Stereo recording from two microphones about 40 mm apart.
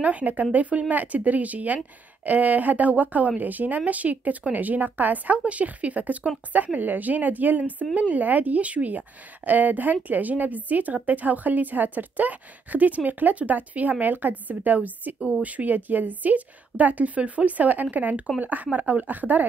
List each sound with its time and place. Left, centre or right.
0.0 s a woman's voice: right